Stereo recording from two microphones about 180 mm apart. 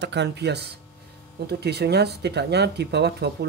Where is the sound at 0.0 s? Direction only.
70° right (ahead or behind).